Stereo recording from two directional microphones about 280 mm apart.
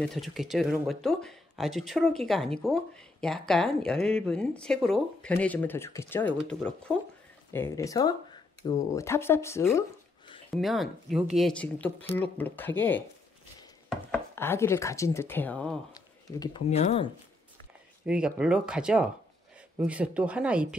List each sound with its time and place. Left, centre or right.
0.0 s speech: centre
10.5 s speech: centre
16.3 s speech: centre
18.0 s speech: centre